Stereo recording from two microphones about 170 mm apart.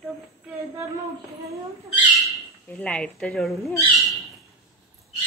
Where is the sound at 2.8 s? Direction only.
5° left (ahead or behind).